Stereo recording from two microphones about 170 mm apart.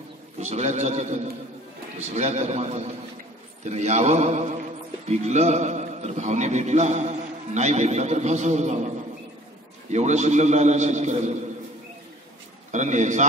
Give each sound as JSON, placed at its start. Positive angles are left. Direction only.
{"t": 0.4, "sound": "a man's voice", "side_deg": -40}
{"t": 12.7, "sound": "a man's voice", "side_deg": -45}